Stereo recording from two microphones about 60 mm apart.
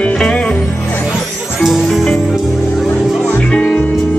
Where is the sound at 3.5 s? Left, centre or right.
Left.